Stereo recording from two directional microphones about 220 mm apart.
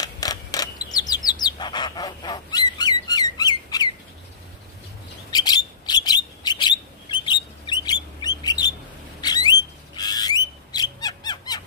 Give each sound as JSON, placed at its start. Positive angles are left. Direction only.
{"t": 0.0, "sound": "bird", "side_deg": 15}
{"t": 5.3, "sound": "bird", "side_deg": 20}
{"t": 9.2, "sound": "squawk", "side_deg": 20}